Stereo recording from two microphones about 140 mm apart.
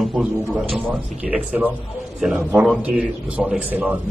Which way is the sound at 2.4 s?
20° right (ahead or behind).